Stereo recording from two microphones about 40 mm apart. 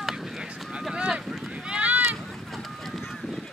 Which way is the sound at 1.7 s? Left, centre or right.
Right.